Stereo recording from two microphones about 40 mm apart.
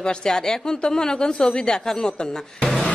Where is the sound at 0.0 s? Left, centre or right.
Left.